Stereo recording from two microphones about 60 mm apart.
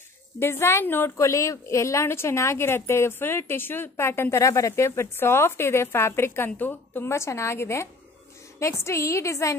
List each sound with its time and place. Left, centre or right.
0.4 s a woman's voice: left
1.1 s a woman's voice: left
7.1 s a woman's voice: left